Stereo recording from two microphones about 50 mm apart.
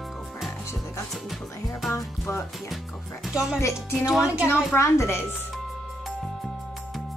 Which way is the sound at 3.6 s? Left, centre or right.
Left.